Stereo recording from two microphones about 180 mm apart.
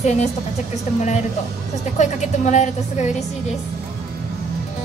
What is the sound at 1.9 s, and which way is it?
A woman's voice, 40° left (ahead or behind).